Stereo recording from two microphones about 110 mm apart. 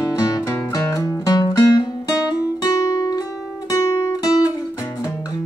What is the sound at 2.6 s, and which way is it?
Music, 35° left (ahead or behind).